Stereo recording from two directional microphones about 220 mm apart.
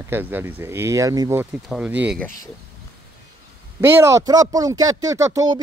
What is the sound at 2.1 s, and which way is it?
Speech, 10° left (ahead or behind).